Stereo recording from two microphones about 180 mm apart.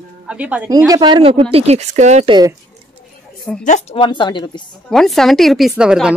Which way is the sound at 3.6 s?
40° left (ahead or behind).